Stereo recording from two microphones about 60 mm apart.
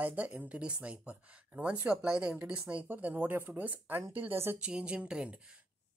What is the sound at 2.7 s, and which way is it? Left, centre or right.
Speech, right.